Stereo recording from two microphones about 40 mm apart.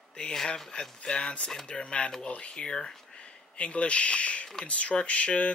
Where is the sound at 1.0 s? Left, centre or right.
Left.